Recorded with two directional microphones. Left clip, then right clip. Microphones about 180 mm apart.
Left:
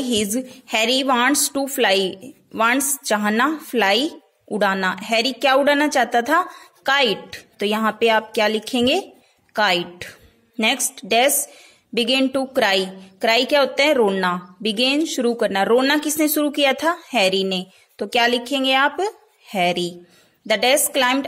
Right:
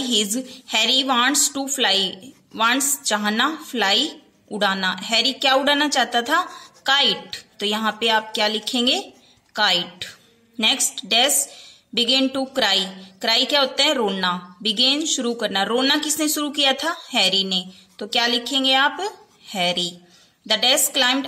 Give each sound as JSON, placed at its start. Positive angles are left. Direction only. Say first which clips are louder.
{"t": 0.0, "sound": "a woman's voice", "louder": "even", "side_deg": 50}